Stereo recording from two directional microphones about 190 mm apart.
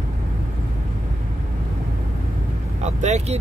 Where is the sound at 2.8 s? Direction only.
35° right (ahead or behind).